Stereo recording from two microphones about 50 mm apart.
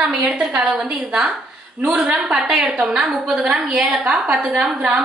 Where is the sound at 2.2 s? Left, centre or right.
Centre.